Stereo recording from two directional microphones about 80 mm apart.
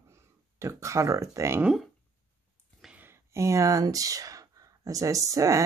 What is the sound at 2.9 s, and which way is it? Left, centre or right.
Speech, right.